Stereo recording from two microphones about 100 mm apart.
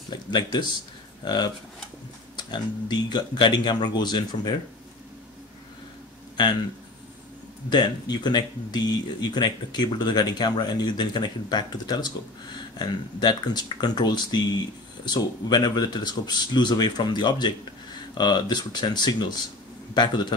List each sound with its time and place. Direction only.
0.1 s speech: 50° left (ahead or behind)
7.7 s speech: 45° left (ahead or behind)